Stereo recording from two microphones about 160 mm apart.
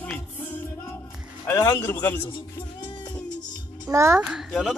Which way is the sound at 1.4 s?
15° left (ahead or behind).